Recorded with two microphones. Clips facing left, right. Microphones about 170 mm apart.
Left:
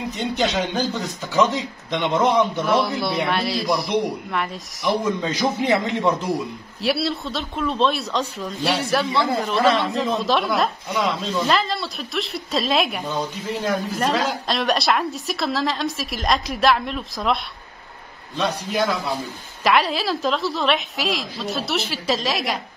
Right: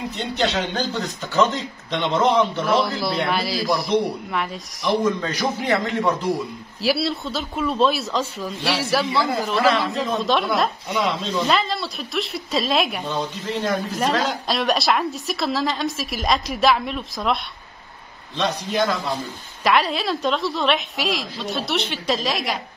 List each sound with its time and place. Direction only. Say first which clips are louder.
0.1 s speech: left 1 dB; 10° left (ahead or behind)
2.6 s speech: even; centre (ahead or behind)
5.2 s a man's voice: left 2 dB; 20° left (ahead or behind)
6.8 s speech: right 1 dB; centre (ahead or behind)